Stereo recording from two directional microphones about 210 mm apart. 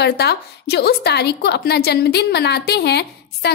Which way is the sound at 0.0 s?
50° left (ahead or behind).